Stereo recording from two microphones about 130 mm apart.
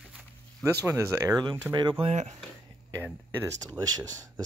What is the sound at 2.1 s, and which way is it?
Speech, 60° right (ahead or behind).